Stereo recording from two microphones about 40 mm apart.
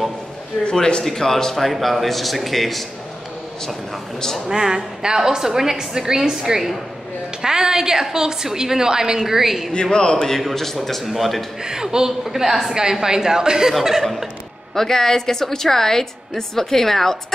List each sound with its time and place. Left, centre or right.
0.7 s a man's voice: left
1.0 s a woman's voice: centre
4.5 s a woman's voice: centre
9.7 s a man's voice: left
10.5 s speech: centre
11.6 s a woman's voice: centre
14.8 s a woman's voice: centre